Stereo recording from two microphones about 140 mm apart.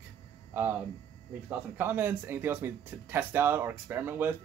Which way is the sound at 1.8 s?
15° right (ahead or behind).